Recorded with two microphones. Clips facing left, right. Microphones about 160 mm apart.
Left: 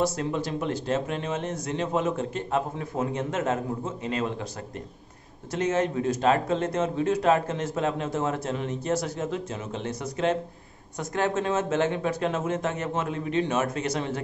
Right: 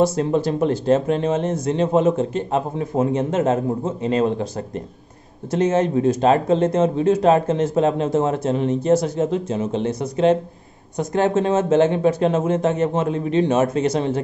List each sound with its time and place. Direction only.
0.0 s speech: 30° right (ahead or behind)